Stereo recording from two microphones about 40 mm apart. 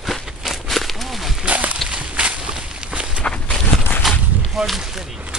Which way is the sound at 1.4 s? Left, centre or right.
Right.